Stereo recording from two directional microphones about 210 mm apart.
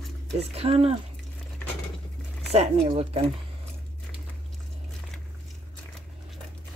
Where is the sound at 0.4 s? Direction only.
30° right (ahead or behind).